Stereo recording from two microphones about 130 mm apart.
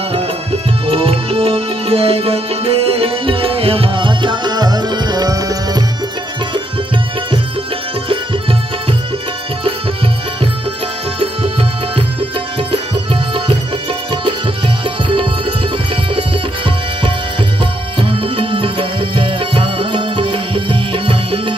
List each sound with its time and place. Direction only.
0.1 s music: 50° right (ahead or behind); by 5.9 s 30° right (ahead or behind)
12.2 s tabla: 45° right (ahead or behind)
16.2 s tabla: 40° right (ahead or behind)
18.0 s music: 45° right (ahead or behind)